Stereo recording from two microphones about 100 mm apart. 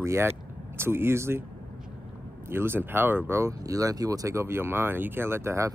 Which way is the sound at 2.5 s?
25° right (ahead or behind).